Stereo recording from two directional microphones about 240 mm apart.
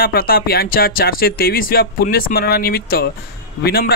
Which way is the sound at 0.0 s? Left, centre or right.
Left.